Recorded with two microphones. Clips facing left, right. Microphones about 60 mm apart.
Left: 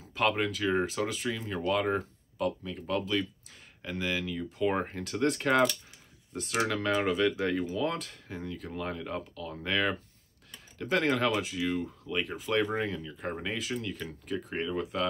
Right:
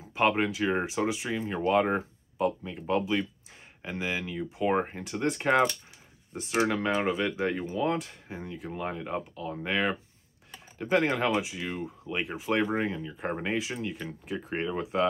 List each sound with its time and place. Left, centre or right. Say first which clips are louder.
0.0 s speech: right 3 dB; right
1.5 s speech: right 4 dB; right
6.3 s speech: right 3 dB; right